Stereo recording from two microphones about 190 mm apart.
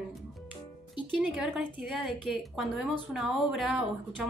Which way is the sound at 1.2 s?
5° right (ahead or behind).